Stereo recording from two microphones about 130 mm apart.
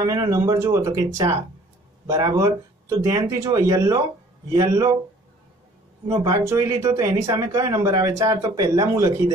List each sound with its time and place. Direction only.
0.0 s speech: 25° right (ahead or behind)
6.0 s speech: 25° right (ahead or behind)